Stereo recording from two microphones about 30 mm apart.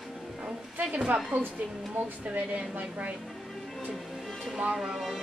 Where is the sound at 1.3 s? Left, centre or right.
Right.